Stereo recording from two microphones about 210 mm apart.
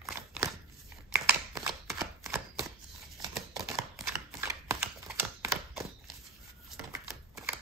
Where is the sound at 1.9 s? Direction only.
15° right (ahead or behind).